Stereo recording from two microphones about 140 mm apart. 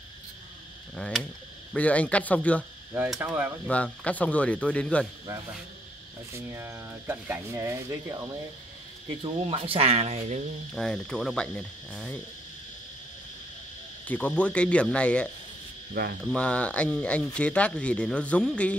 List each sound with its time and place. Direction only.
0.9 s cricket: 5° left (ahead or behind)
1.7 s speech: 10° left (ahead or behind)
3.2 s speech: 15° right (ahead or behind)
3.6 s speech: 10° left (ahead or behind)
6.3 s speech: 15° right (ahead or behind)
9.2 s speech: 40° right (ahead or behind)
10.7 s cricket: 5° left (ahead or behind)
14.0 s speech: 10° left (ahead or behind)
15.9 s speech: 90° right
16.3 s speech: 10° left (ahead or behind)